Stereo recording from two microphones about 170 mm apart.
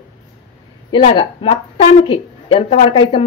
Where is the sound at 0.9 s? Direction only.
30° left (ahead or behind).